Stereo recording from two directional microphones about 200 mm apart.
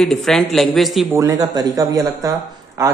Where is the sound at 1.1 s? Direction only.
15° right (ahead or behind).